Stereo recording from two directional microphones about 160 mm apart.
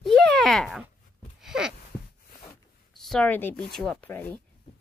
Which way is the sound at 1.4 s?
5° right (ahead or behind).